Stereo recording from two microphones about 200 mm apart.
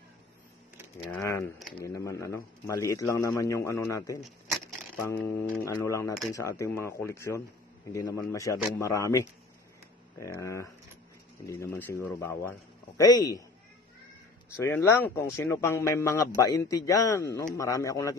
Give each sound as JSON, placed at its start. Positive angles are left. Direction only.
{"t": 1.1, "sound": "a man's voice", "side_deg": 15}
{"t": 14.6, "sound": "a man's voice", "side_deg": 10}